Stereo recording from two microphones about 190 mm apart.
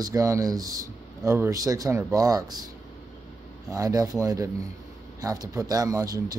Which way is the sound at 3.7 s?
20° right (ahead or behind).